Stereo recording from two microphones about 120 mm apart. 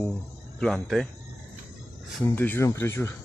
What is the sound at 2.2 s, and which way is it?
Speech, 20° left (ahead or behind).